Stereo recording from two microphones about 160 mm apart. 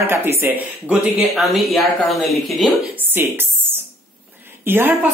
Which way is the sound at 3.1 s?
15° right (ahead or behind).